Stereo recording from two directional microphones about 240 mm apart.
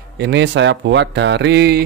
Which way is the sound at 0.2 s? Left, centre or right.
Right.